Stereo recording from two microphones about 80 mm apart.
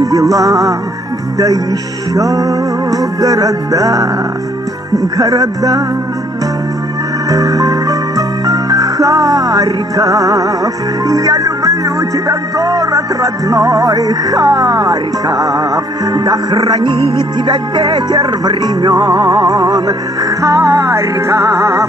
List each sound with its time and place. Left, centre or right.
0.0 s music: right
7.2 s music: right
16.9 s music: left
17.5 s music: right